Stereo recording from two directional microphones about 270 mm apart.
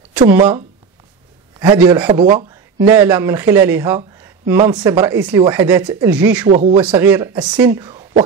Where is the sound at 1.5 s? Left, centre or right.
Centre.